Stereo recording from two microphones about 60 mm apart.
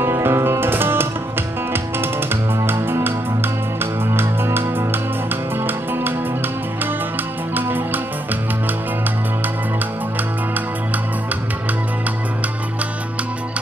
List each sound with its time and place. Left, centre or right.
0.0 s music: right
2.6 s music: right
7.5 s music: right